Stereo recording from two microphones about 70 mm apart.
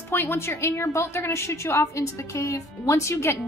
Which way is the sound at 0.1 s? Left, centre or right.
Left.